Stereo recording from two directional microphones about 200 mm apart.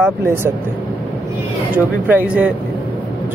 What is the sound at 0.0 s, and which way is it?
Speech, 10° right (ahead or behind).